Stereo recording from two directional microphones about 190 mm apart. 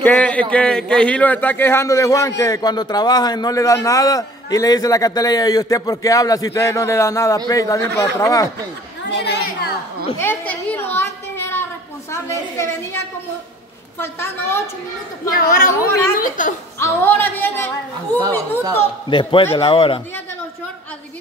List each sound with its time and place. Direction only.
0.0 s a man's voice: 5° left (ahead or behind)
9.1 s speech: 65° left (ahead or behind)
10.1 s a woman's voice: 10° left (ahead or behind)
15.3 s speech: 50° left (ahead or behind)
16.8 s a man's voice: 10° left (ahead or behind)
19.0 s speech: 25° left (ahead or behind)